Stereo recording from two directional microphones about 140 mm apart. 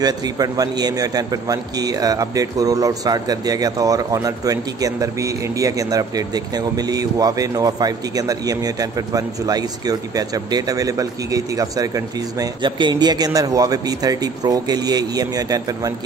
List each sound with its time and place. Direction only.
0.0 s a man's voice: 25° right (ahead or behind)